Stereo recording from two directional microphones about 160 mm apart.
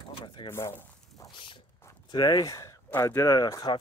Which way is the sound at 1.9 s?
25° left (ahead or behind).